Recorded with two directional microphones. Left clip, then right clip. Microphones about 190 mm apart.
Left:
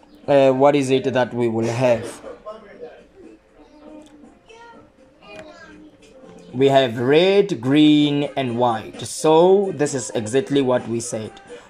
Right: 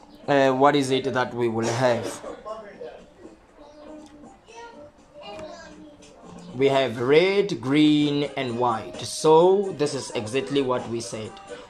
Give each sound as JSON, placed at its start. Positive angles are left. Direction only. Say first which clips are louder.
{"t": 0.2, "sound": "speech", "louder": "left 4 dB", "side_deg": 15}
{"t": 6.6, "sound": "speech", "louder": "left 5 dB", "side_deg": 25}